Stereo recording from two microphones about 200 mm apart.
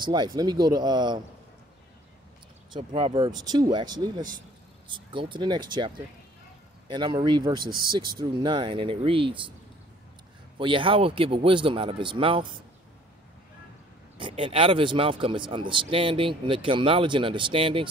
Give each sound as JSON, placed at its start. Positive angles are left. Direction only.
{"t": 0.0, "sound": "speech", "side_deg": -20}
{"t": 2.7, "sound": "speech", "side_deg": -25}
{"t": 7.6, "sound": "speech", "side_deg": -45}
{"t": 8.2, "sound": "speech", "side_deg": -20}
{"t": 10.6, "sound": "speech", "side_deg": -25}
{"t": 14.1, "sound": "speech", "side_deg": -25}